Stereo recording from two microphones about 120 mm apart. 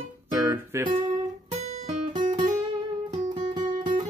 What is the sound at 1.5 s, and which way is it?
Guitar, 70° right (ahead or behind).